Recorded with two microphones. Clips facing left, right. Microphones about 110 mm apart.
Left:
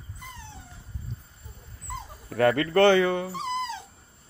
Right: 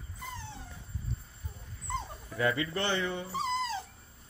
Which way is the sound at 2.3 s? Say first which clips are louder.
Left 9 dB; 60° left (ahead or behind).